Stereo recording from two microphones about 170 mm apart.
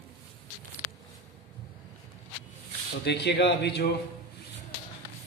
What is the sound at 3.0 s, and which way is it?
Speech, 80° left.